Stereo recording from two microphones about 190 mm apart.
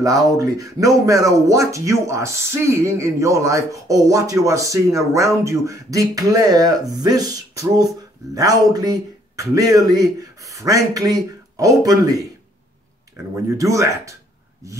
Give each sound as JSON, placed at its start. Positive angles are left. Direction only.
{"t": 0.0, "sound": "speech", "side_deg": -20}